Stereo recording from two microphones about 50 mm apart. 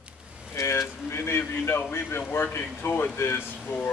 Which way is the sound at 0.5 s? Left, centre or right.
Left.